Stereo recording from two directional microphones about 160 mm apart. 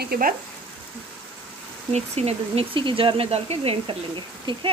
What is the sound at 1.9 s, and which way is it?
Speech, 40° right (ahead or behind).